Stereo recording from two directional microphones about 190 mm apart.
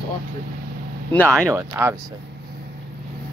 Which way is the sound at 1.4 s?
10° right (ahead or behind).